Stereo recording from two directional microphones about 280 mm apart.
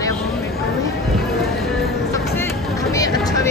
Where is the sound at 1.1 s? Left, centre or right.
Centre.